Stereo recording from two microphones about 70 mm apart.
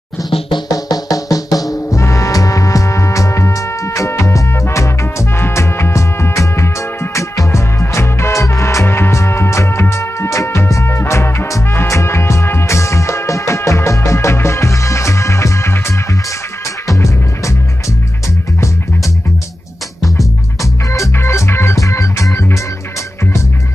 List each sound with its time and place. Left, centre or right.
0.7 s music: left
16.8 s music: left
21.2 s music: left